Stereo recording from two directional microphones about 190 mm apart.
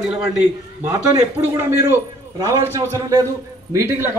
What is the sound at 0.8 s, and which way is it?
A man's voice, 15° right (ahead or behind).